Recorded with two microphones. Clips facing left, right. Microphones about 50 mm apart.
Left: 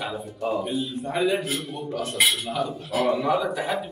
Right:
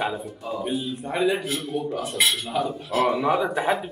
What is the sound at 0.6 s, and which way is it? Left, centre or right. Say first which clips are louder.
Speech: even; centre.